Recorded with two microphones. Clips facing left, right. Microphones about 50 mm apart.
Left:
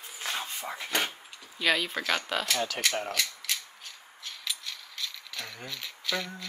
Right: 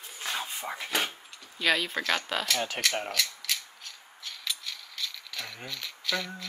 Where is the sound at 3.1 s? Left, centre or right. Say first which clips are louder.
Right 1 dB; centre.